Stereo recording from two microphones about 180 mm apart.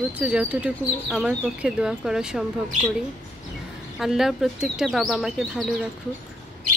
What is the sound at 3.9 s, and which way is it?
Speech, centre (ahead or behind).